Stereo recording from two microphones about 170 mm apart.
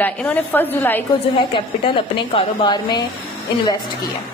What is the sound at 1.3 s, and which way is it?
A woman's voice, 30° left (ahead or behind).